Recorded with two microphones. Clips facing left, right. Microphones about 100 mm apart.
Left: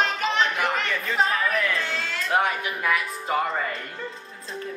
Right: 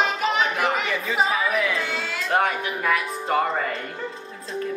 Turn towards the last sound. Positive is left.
turn(degrees=0)  # may be behind; listen again after turning